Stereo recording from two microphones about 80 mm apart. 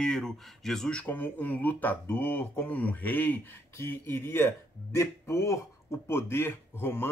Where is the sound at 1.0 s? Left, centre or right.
Left.